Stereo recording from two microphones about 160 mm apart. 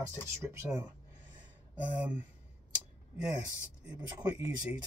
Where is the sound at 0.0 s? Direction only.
15° right (ahead or behind).